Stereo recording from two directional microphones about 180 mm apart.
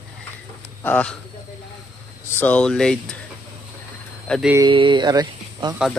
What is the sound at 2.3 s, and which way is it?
Speech, 10° left (ahead or behind).